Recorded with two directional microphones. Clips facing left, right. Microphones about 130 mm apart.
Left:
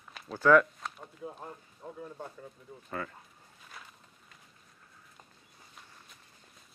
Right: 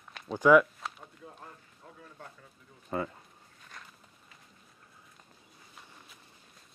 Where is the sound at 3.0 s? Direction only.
20° right (ahead or behind).